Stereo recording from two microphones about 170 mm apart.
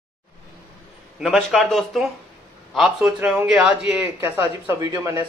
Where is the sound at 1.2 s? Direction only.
Centre (ahead or behind).